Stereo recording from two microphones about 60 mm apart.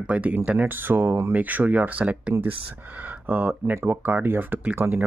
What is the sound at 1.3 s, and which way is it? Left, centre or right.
Speech, right.